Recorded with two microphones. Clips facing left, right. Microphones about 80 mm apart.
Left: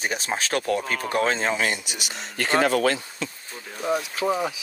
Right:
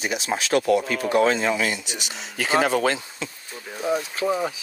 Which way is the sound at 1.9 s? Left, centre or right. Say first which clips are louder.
Even; centre.